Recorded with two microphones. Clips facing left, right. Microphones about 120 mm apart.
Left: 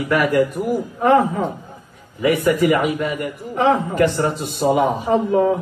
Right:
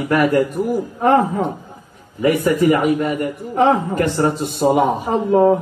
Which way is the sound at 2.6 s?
40° right (ahead or behind).